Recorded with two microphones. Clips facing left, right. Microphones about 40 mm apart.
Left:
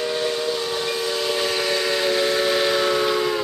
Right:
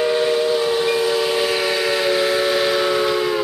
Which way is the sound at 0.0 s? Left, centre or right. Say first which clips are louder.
Right 6 dB; centre.